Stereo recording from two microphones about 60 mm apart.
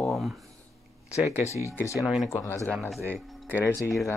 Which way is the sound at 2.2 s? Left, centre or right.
Left.